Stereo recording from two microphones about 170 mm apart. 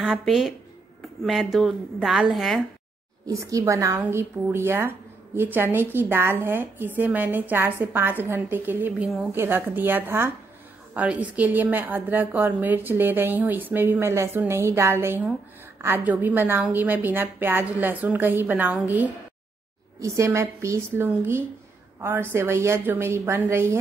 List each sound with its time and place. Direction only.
0.0 s a woman's voice: centre (ahead or behind)
3.3 s a woman's voice: 20° right (ahead or behind)